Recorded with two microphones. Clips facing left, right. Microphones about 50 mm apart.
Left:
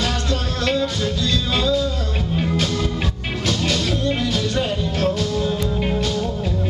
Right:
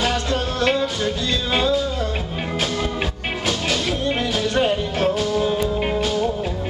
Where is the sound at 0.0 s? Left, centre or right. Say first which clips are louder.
Right 2 dB; right.